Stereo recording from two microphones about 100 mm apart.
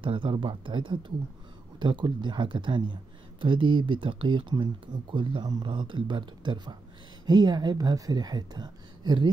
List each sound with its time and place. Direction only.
0.0 s speech: 60° right (ahead or behind)